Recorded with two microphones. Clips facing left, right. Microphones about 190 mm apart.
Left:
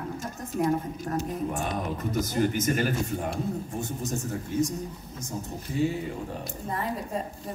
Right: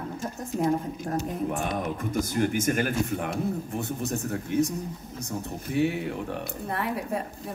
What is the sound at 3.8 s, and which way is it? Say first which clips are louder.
Speech: right 2 dB; 65° right (ahead or behind).